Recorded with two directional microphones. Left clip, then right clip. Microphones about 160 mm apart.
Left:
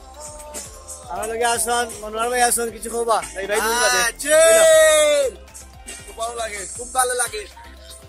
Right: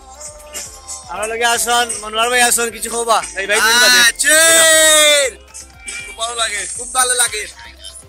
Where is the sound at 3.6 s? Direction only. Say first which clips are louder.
Right 9 dB; 20° left (ahead or behind).